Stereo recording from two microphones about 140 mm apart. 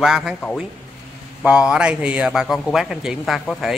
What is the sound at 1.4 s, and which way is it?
Speech, 5° right (ahead or behind).